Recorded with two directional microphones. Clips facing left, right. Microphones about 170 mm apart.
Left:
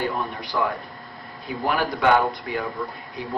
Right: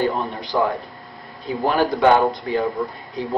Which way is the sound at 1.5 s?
30° right (ahead or behind).